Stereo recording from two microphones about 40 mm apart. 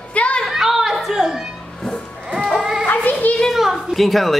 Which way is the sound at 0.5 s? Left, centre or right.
Centre.